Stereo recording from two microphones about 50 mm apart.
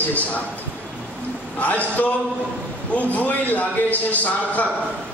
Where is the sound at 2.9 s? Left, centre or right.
Left.